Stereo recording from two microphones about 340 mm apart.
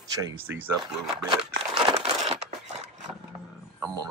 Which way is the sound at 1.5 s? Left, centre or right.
Centre.